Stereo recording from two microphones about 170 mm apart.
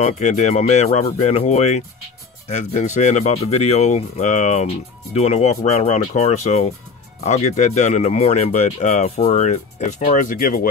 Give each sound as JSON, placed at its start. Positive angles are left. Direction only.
{"t": 0.0, "sound": "speech", "side_deg": 45}